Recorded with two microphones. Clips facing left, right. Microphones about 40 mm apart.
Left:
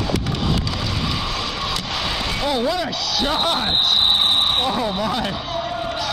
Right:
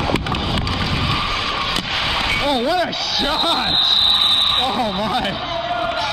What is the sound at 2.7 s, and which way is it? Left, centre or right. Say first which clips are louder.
Speech: right 3 dB; centre.